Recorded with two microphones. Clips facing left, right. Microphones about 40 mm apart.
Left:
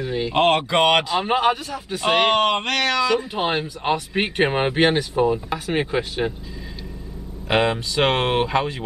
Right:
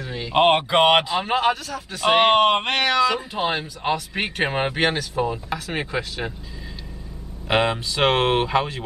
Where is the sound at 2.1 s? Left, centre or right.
Centre.